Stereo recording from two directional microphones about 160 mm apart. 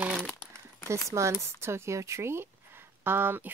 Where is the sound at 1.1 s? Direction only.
20° right (ahead or behind).